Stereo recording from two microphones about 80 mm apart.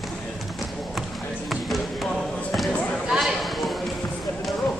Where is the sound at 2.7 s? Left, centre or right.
Centre.